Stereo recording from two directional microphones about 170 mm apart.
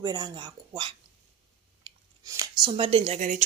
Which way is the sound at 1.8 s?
20° right (ahead or behind).